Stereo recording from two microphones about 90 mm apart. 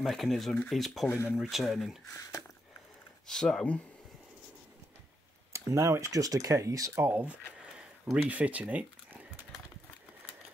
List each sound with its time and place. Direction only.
0.0 s speech: centre (ahead or behind)
1.0 s speech: 25° left (ahead or behind)
1.3 s speech: centre (ahead or behind)
3.3 s speech: 5° left (ahead or behind)
5.5 s speech: 35° right (ahead or behind)
7.1 s speech: 15° right (ahead or behind)